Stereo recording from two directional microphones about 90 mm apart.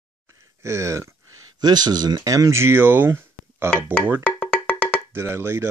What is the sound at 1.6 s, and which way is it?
Speech, 50° right (ahead or behind).